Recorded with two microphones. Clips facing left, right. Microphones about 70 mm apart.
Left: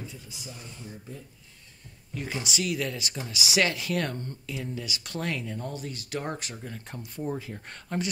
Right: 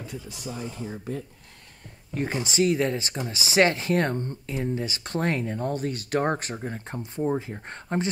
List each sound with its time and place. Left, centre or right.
0.0 s speech: right
0.9 s speech: right
2.1 s speech: right